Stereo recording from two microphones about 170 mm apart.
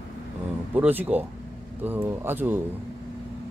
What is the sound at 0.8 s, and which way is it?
Speech, 10° right (ahead or behind).